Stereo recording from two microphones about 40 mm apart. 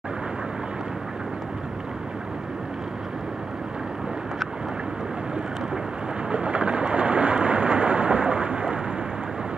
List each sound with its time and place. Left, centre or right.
6.3 s vehicle: right